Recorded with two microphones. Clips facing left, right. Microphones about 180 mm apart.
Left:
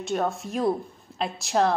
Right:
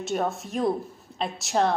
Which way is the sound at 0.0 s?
Centre (ahead or behind).